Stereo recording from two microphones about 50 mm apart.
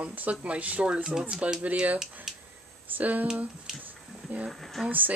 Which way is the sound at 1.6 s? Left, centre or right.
Right.